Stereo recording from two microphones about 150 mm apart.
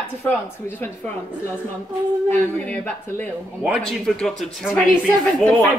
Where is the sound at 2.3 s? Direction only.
10° left (ahead or behind).